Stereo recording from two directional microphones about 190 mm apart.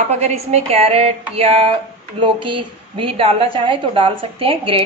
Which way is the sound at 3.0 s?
30° right (ahead or behind).